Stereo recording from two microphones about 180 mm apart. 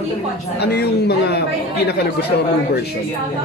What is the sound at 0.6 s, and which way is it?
Speech, 65° left (ahead or behind).